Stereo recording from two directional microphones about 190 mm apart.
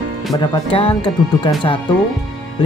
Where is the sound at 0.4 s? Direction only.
25° left (ahead or behind).